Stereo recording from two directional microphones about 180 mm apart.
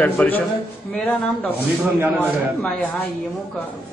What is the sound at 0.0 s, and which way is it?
A man's voice, 10° left (ahead or behind).